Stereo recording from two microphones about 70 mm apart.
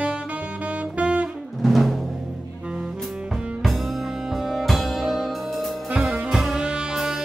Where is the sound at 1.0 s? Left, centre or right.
Centre.